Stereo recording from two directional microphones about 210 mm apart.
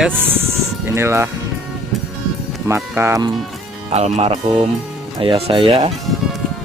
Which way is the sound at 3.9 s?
30° right (ahead or behind).